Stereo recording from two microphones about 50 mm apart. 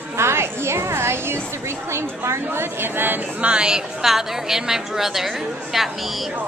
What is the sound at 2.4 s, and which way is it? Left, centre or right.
Speech, right.